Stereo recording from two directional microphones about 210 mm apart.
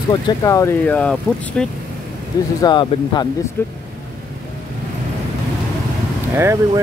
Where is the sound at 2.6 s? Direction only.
20° left (ahead or behind).